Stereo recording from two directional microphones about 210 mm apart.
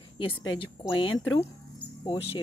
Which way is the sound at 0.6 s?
25° left (ahead or behind).